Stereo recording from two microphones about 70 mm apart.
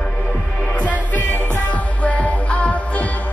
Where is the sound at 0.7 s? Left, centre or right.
Left.